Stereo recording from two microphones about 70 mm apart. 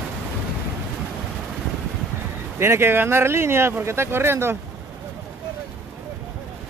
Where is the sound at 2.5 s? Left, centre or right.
Right.